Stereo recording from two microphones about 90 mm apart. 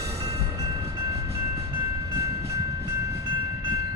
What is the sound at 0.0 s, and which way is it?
Train, 35° right (ahead or behind).